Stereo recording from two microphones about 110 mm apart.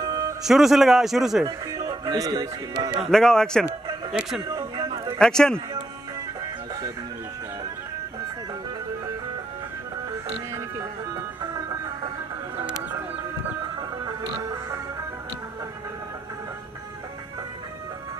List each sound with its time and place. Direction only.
0.0 s music: 35° right (ahead or behind)
0.4 s speech: 5° right (ahead or behind)
1.4 s speech: 35° right (ahead or behind)
3.1 s speech: 5° left (ahead or behind)
4.1 s speech: 5° right (ahead or behind)
5.2 s a man's voice: 5° left (ahead or behind)
11.5 s music: 35° right (ahead or behind)
14.0 s music: 40° right (ahead or behind)